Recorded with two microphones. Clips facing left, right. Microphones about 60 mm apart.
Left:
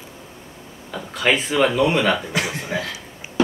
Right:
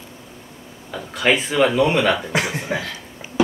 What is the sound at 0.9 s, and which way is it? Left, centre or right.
Speech, centre.